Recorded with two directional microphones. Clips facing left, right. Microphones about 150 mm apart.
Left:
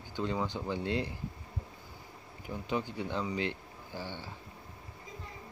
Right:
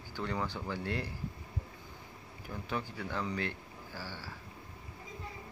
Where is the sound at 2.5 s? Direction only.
20° left (ahead or behind).